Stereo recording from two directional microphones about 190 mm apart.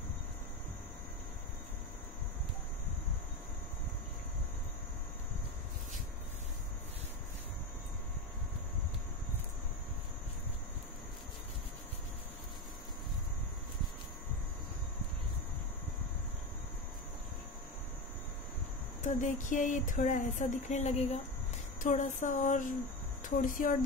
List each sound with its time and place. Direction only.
19.0 s speech: 40° left (ahead or behind)